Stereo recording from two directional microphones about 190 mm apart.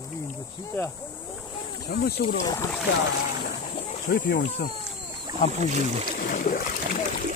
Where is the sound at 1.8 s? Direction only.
55° left (ahead or behind).